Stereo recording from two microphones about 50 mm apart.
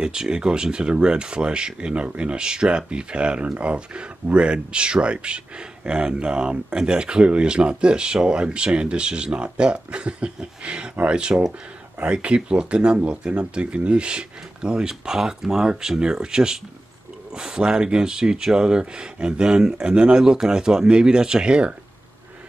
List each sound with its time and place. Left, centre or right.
0.0 s speech: centre